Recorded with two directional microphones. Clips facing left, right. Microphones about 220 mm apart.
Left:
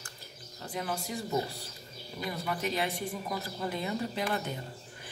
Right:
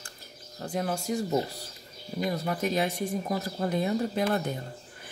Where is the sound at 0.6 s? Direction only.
45° right (ahead or behind).